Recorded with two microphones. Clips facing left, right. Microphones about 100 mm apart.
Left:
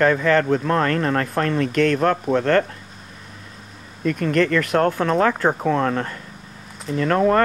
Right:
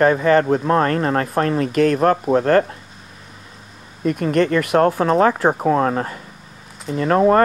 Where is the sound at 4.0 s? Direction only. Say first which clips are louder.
Right 2 dB; 10° right (ahead or behind).